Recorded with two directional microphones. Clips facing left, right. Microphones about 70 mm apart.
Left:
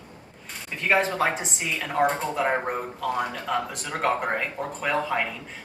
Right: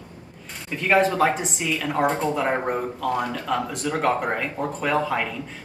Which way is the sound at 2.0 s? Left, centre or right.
Centre.